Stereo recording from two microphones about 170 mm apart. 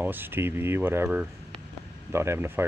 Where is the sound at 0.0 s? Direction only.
10° right (ahead or behind).